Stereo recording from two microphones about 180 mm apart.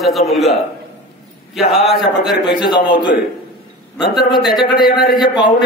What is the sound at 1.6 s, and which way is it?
Speech, centre (ahead or behind).